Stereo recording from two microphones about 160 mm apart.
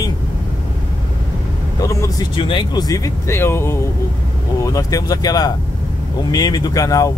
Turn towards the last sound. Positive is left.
turn(degrees=20)  # may be behind; listen again after turning